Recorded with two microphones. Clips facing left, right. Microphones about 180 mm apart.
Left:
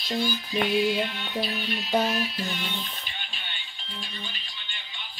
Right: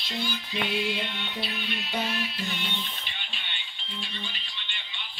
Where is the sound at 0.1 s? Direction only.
40° left (ahead or behind).